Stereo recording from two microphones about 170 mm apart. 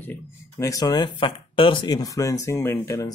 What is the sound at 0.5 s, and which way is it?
Speech, 20° left (ahead or behind).